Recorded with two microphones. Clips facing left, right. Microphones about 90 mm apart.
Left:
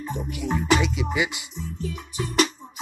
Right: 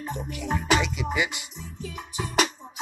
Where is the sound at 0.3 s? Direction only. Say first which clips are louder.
Left 2 dB; 5° left (ahead or behind).